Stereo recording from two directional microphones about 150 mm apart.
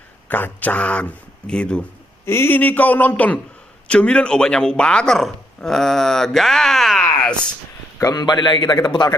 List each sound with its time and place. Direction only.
0.3 s speech: 10° left (ahead or behind)
8.0 s a man's voice: 25° left (ahead or behind)